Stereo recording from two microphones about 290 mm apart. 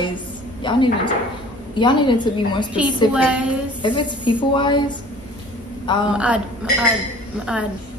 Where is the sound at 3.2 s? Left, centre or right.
Centre.